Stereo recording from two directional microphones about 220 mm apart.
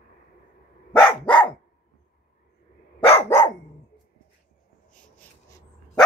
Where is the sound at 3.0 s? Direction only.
30° left (ahead or behind).